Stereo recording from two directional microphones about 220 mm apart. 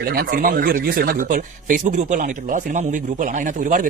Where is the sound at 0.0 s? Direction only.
45° right (ahead or behind).